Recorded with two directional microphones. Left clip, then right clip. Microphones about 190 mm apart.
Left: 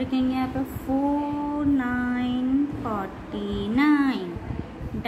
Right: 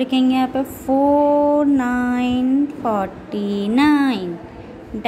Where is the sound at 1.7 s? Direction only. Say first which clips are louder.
Right 6 dB; 30° right (ahead or behind).